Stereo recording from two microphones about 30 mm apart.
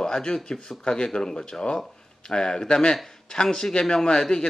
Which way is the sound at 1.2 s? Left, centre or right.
Centre.